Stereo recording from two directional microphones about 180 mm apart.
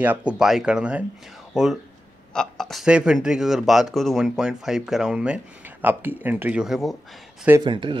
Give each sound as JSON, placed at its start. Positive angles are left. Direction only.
{"t": 0.0, "sound": "speech", "side_deg": -10}
{"t": 7.6, "sound": "speech", "side_deg": -25}